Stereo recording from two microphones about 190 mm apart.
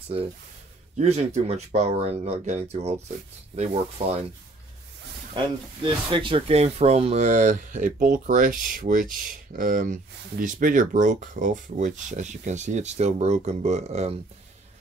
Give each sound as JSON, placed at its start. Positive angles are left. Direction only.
{"t": 0.9, "sound": "speech", "side_deg": -35}
{"t": 6.0, "sound": "speech", "side_deg": -25}